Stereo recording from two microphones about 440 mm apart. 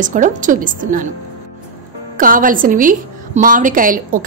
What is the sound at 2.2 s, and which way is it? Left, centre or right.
A woman's voice, centre.